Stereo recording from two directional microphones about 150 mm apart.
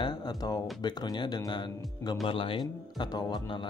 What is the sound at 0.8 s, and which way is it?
Speech, 30° left (ahead or behind).